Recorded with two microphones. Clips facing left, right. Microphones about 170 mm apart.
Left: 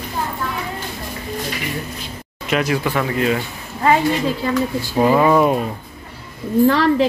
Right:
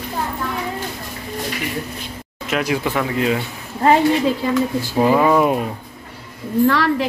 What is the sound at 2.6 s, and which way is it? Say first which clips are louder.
Speech: left 1 dB; 15° right (ahead or behind).